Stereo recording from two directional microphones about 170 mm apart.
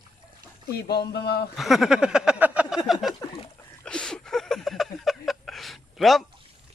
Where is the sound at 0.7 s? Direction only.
70° left (ahead or behind).